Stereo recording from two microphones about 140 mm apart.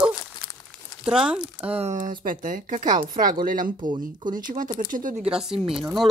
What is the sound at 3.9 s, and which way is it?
Speech, 35° right (ahead or behind).